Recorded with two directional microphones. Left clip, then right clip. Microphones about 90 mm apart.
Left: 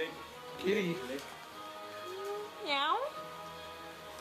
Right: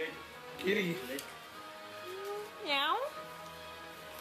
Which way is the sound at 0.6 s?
Centre (ahead or behind).